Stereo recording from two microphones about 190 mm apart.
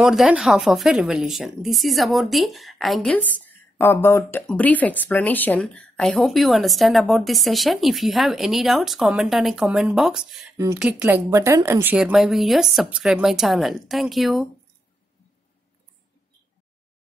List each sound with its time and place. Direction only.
0.0 s speech: 5° right (ahead or behind)